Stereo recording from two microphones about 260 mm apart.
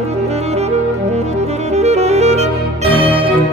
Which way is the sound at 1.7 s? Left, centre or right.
Right.